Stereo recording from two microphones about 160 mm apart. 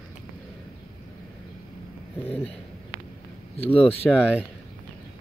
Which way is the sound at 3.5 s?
35° left (ahead or behind).